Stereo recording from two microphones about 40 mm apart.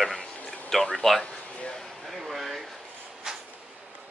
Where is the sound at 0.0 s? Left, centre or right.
Centre.